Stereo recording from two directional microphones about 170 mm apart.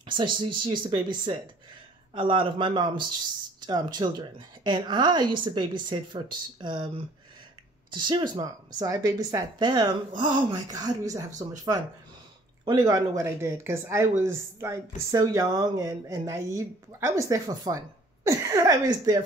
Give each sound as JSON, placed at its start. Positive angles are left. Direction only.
{"t": 0.0, "sound": "speech", "side_deg": -30}
{"t": 7.9, "sound": "speech", "side_deg": -25}